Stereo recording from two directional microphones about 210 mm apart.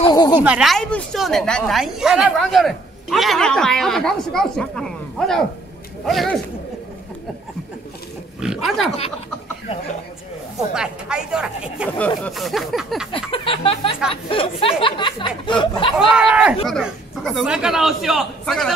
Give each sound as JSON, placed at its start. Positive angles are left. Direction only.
{"t": 0.0, "sound": "a sound", "side_deg": 20}
{"t": 0.4, "sound": "a woman's voice", "side_deg": -5}
{"t": 8.4, "sound": "dog", "side_deg": 0}
{"t": 10.7, "sound": "a woman's voice", "side_deg": -5}
{"t": 13.3, "sound": "speech", "side_deg": 25}
{"t": 16.1, "sound": "a woman's voice", "side_deg": -5}